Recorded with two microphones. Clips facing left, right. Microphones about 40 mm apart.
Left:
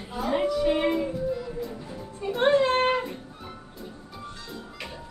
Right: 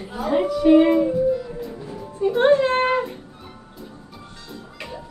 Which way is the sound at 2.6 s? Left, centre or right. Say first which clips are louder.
Right 3 dB; right.